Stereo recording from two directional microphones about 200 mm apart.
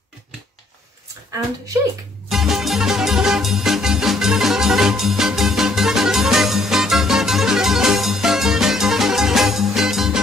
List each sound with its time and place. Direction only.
2.2 s music: centre (ahead or behind)